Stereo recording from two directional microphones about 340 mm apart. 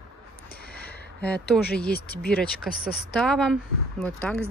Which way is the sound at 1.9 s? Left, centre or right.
Left.